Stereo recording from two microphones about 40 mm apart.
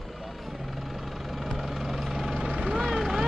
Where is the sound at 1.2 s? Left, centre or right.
Centre.